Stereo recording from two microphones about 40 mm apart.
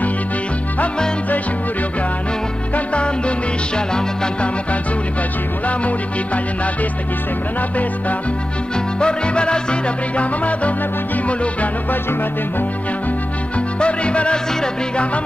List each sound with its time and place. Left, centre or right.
2.7 s music: left
5.7 s music: left
9.0 s music: left
13.7 s music: left